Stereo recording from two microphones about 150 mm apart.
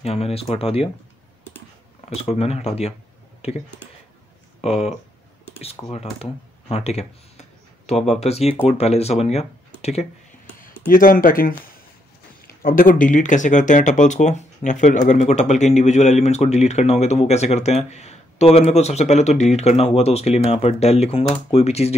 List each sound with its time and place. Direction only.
0.0 s speech: 40° left (ahead or behind)
2.0 s speech: 45° left (ahead or behind)
4.6 s speech: 45° left (ahead or behind)
10.9 s speech: 75° left (ahead or behind)
12.6 s speech: 70° left (ahead or behind); by 21.9 s 45° left (ahead or behind)